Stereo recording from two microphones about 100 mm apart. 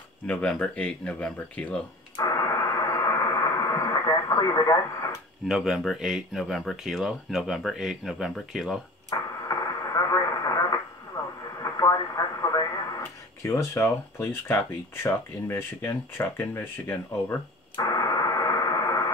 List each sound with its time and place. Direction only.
0.3 s speech: 10° left (ahead or behind)
2.1 s radio: 35° left (ahead or behind)
5.5 s speech: 5° right (ahead or behind)
9.1 s radio: 35° left (ahead or behind)
13.0 s speech: 30° left (ahead or behind)
17.7 s radio: 35° left (ahead or behind)